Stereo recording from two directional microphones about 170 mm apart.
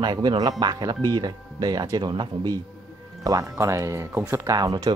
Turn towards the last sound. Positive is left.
turn(degrees=-20)  # may be behind; listen again after turning